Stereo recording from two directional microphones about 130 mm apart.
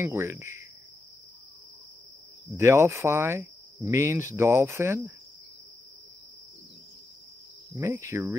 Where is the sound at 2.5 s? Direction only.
20° right (ahead or behind).